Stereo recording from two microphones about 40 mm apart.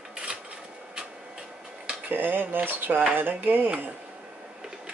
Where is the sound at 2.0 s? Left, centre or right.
Right.